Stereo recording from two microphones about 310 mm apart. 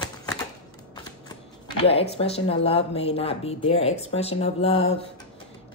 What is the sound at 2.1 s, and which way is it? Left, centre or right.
A woman's voice, centre.